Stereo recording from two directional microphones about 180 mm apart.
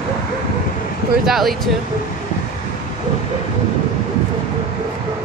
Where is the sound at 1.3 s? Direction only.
Centre (ahead or behind).